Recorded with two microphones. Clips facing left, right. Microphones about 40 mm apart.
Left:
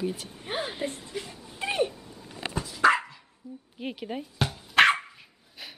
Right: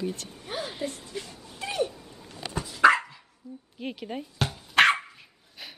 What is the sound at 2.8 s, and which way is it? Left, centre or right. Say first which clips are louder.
Dog: right 2 dB; right.